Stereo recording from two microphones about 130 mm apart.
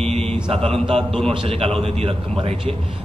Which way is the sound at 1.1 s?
Centre (ahead or behind).